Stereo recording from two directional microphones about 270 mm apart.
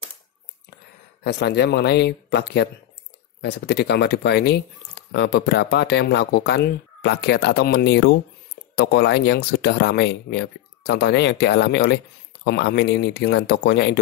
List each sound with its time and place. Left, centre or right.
1.2 s speech: left